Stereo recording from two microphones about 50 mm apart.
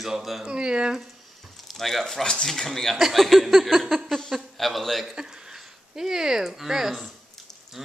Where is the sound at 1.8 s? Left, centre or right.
Centre.